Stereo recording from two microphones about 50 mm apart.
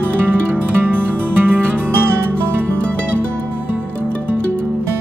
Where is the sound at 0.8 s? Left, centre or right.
Right.